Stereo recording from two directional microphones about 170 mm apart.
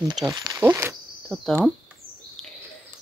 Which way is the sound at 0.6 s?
15° right (ahead or behind).